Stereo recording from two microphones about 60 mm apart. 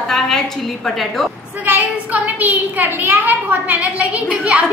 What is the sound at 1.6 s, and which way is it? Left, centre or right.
A woman's voice, right.